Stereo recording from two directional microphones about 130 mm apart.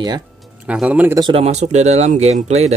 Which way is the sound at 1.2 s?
50° right (ahead or behind).